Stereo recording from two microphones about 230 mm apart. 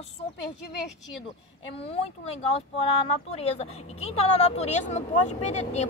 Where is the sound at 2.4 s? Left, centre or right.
Left.